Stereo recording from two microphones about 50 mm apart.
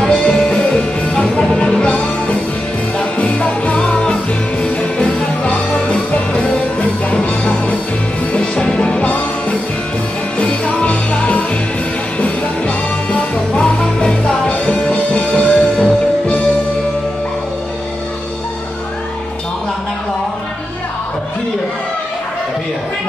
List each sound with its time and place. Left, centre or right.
0.0 s music: centre